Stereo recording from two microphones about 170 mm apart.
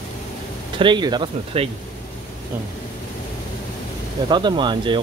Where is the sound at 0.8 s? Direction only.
25° right (ahead or behind).